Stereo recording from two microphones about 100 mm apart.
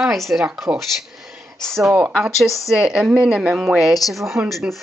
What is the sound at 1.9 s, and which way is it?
Speech, 10° right (ahead or behind).